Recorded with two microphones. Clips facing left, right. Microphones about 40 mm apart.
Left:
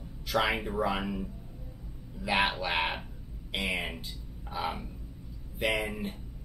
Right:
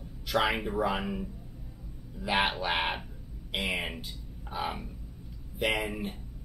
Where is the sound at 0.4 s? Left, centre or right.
Centre.